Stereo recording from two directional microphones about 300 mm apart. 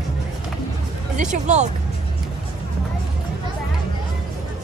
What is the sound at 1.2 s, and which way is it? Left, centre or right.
Speech, right.